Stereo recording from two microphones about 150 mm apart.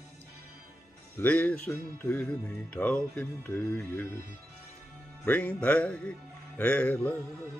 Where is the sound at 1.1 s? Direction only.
10° left (ahead or behind).